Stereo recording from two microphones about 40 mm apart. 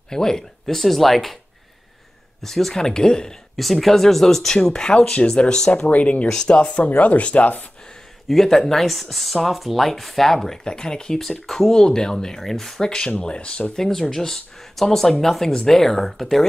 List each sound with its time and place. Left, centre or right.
0.1 s speech: centre
2.4 s speech: centre
3.5 s speech: centre
5.9 s speech: left
6.3 s speech: left
6.8 s speech: left
8.3 s speech: centre
11.1 s speech: centre
13.2 s speech: left
13.7 s speech: centre